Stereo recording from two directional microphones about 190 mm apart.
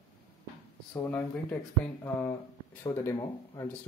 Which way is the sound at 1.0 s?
10° left (ahead or behind).